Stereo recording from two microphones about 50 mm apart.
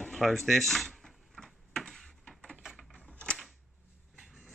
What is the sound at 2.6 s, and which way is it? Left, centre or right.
Typewriter, centre.